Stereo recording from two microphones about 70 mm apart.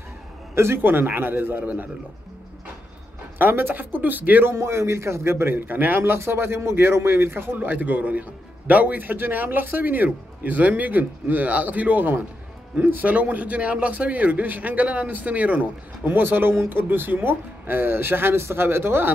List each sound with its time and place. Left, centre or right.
0.6 s a man's voice: right
3.3 s a man's voice: right
4.6 s a man's voice: right